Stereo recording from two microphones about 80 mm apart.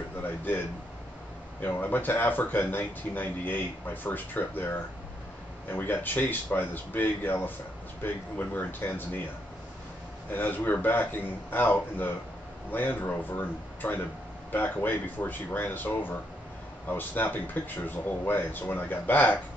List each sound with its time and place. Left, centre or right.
1.6 s speech: left
10.3 s speech: left